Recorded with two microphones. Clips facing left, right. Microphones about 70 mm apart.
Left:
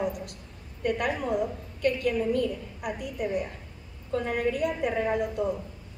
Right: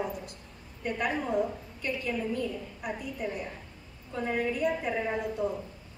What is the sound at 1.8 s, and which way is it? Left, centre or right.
Speech, left.